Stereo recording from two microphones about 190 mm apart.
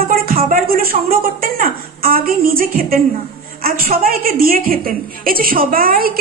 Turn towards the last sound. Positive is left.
turn(degrees=-50)  # may be behind; listen again after turning